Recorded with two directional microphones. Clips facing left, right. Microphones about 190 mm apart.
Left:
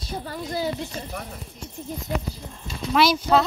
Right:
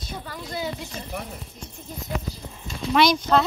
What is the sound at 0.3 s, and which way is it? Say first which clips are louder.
Speech: left 4 dB; 35° left (ahead or behind).